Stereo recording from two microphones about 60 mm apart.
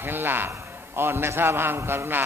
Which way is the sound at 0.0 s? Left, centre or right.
Right.